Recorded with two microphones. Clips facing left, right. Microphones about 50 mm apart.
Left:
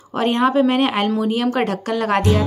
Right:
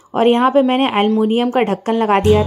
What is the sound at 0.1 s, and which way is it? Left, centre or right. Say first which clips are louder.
A woman's voice: right 5 dB; right.